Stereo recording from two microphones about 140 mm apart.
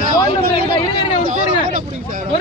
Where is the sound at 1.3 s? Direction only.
65° right (ahead or behind).